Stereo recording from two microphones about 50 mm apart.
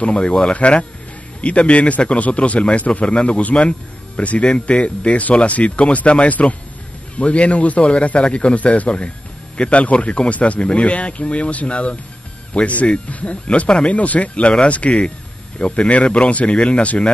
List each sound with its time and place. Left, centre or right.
0.0 s speech: left